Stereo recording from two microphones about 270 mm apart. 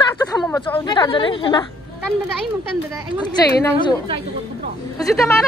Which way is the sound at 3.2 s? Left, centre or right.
Centre.